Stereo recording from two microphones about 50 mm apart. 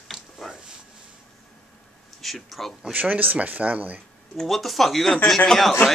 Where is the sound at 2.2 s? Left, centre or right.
Centre.